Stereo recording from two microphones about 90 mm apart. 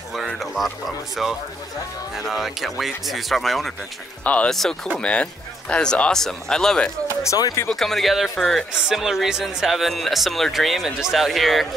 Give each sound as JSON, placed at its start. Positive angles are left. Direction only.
{"t": 0.1, "sound": "speech", "side_deg": 0}
{"t": 4.2, "sound": "speech", "side_deg": 15}
{"t": 7.2, "sound": "speech", "side_deg": 45}
{"t": 7.7, "sound": "speech", "side_deg": 5}